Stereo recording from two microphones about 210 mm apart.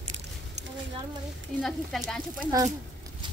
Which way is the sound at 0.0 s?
30° right (ahead or behind).